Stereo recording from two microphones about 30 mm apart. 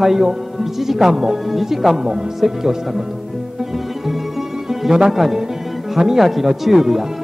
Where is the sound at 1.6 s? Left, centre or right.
Centre.